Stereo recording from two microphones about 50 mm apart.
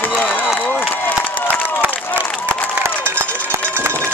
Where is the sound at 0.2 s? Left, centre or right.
Left.